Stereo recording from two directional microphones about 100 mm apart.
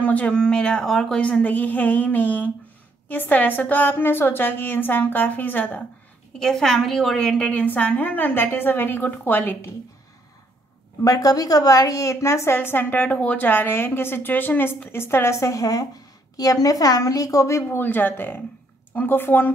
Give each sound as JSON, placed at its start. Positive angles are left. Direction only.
{"t": 0.0, "sound": "a woman's voice", "side_deg": 15}
{"t": 6.4, "sound": "a woman's voice", "side_deg": 5}
{"t": 11.1, "sound": "a woman's voice", "side_deg": 40}
{"t": 17.6, "sound": "a woman's voice", "side_deg": 20}